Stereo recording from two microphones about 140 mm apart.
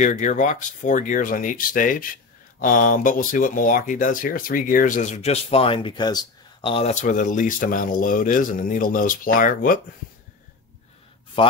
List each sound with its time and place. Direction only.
0.0 s speech: 60° left (ahead or behind); by 6.9 s 40° left (ahead or behind)
6.9 s speech: 65° left (ahead or behind)
11.4 s speech: 40° left (ahead or behind)